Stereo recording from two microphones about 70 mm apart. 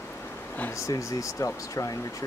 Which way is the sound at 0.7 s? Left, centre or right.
Left.